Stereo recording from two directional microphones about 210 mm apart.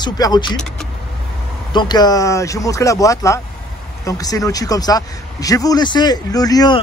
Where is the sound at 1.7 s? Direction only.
20° left (ahead or behind).